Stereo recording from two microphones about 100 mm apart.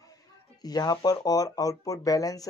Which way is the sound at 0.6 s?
40° left (ahead or behind).